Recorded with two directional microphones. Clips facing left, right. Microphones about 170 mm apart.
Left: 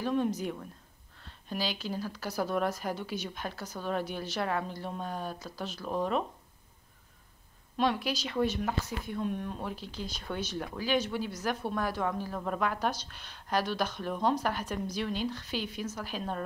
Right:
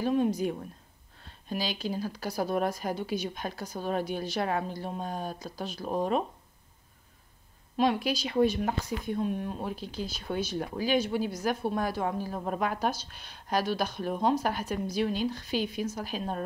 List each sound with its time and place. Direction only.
0.0 s speech: 15° right (ahead or behind)
7.7 s speech: 15° right (ahead or behind)